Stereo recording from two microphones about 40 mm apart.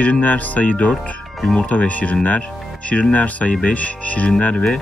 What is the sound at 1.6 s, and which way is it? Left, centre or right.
Speech, left.